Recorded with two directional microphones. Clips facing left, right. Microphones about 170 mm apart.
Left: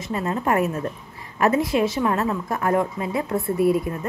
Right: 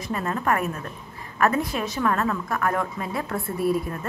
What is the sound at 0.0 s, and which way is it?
A woman's voice, 25° left (ahead or behind).